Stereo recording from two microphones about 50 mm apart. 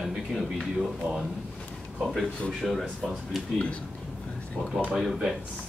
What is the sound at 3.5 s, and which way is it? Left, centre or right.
Speech, left.